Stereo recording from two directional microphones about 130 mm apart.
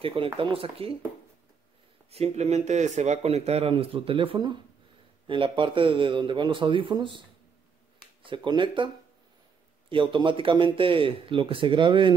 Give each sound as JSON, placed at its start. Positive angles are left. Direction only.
{"t": 0.0, "sound": "speech", "side_deg": -45}
{"t": 2.0, "sound": "speech", "side_deg": -55}